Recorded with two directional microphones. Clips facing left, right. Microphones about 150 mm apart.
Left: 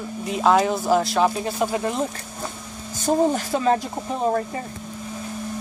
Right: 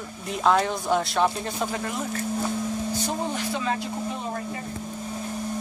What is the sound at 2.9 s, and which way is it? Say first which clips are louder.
Speech: left 8 dB; 45° left (ahead or behind).